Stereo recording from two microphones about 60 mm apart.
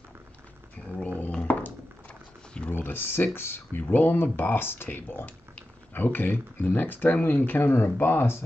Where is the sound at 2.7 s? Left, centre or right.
Left.